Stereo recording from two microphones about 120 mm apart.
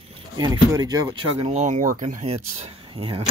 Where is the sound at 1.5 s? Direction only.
85° right; by 2.7 s 65° right (ahead or behind).